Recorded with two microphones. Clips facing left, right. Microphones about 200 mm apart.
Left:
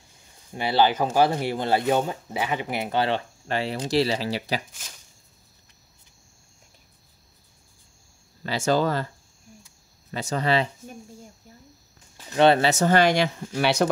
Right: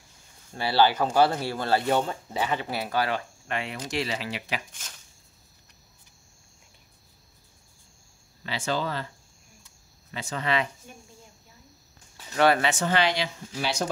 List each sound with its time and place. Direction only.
0.5 s speech: 20° left (ahead or behind); by 4.6 s 35° left (ahead or behind)
8.5 s speech: 45° left (ahead or behind)
10.1 s speech: 40° left (ahead or behind)
12.4 s speech: 25° left (ahead or behind)
12.6 s speech: 40° left (ahead or behind); by 13.8 s 65° left (ahead or behind)